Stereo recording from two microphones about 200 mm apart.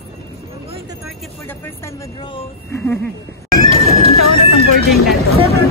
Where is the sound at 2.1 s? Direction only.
25° left (ahead or behind).